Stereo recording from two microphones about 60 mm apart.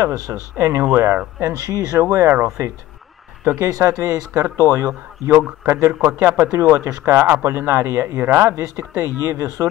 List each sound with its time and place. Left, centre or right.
0.3 s speech: right
0.9 s speech: right
1.4 s speech: right
6.4 s speech: right
8.3 s speech: right
8.5 s speech: right